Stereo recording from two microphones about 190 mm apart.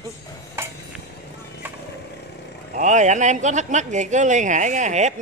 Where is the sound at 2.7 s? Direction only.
40° right (ahead or behind).